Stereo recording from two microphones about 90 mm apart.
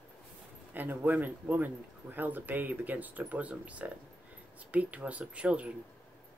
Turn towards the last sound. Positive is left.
turn(degrees=-15)  # may be behind; listen again after turning